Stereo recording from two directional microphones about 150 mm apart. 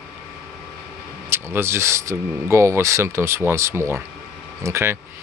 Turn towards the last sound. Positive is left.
turn(degrees=-15)  # may be behind; listen again after turning